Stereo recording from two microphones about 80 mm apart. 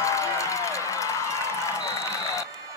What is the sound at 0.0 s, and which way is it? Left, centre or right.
Run, left.